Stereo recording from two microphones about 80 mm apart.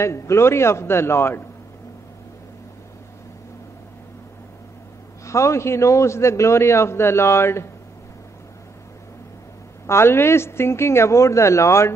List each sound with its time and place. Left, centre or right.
0.0 s a man's voice: left
5.2 s a man's voice: left
9.8 s a man's voice: left